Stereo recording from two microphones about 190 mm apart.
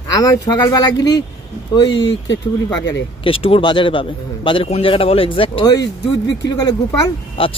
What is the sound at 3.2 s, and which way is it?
A man's voice, 30° left (ahead or behind).